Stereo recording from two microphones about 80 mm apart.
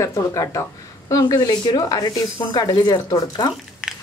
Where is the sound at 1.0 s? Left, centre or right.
Left.